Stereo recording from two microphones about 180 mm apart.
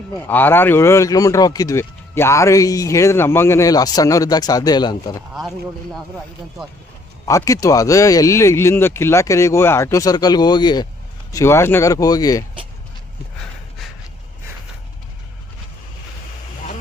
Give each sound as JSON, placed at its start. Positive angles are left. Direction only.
{"t": 0.3, "sound": "speech", "side_deg": 10}
{"t": 7.2, "sound": "speech", "side_deg": 15}